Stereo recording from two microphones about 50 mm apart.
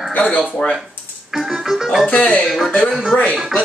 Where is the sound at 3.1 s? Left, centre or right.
Left.